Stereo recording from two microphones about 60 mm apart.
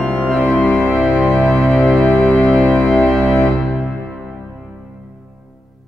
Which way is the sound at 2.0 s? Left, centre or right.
Left.